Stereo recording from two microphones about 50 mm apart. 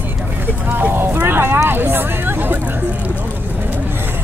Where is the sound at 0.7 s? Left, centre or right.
Right.